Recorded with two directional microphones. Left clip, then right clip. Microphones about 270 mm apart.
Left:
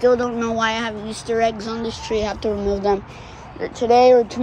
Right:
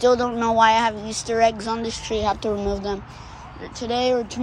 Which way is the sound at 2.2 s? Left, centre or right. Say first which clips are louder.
Right 2 dB; centre.